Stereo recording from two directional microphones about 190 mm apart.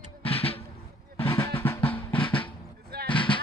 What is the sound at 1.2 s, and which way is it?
Drum, 15° left (ahead or behind).